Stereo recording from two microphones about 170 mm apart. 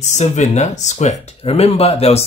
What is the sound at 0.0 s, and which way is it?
Speech, 45° left (ahead or behind).